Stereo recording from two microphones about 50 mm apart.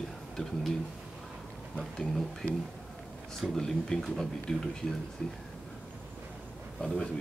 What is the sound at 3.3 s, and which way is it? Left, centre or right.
Speech, centre.